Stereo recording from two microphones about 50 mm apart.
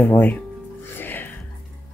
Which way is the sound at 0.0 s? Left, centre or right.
Left.